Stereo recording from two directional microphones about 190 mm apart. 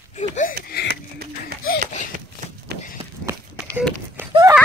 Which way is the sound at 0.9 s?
55° right (ahead or behind).